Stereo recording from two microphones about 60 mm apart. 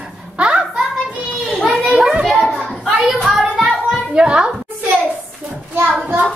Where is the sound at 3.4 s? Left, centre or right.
Centre.